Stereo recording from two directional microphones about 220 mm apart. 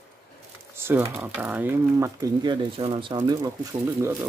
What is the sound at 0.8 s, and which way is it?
Speech, 10° right (ahead or behind).